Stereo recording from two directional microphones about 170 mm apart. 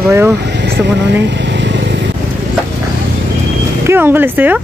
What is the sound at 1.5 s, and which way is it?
Vehicle, 90° right.